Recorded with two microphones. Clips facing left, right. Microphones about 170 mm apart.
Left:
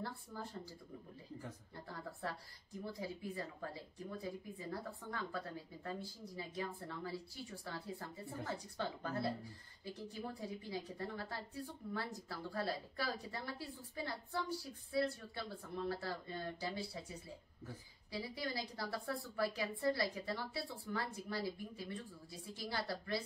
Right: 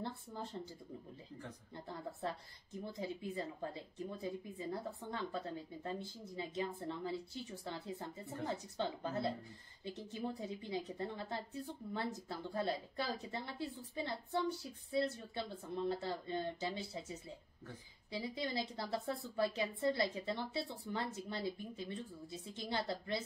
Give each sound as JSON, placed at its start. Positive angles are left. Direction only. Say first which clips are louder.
{"t": 0.0, "sound": "a sound", "louder": "right 2 dB", "side_deg": -20}
{"t": 2.8, "sound": "a woman's voice", "louder": "right 2 dB", "side_deg": -20}
{"t": 18.1, "sound": "a woman's voice", "louder": "right 3 dB", "side_deg": -20}